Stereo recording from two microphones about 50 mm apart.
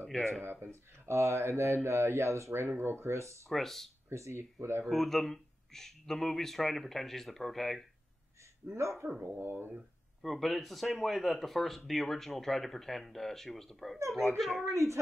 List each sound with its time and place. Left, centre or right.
0.1 s speech: centre
0.4 s speech: right
2.8 s speech: right
3.4 s speech: centre
4.1 s speech: right
4.8 s speech: centre
9.0 s speech: right
9.4 s speech: right
10.2 s speech: centre
14.7 s speech: right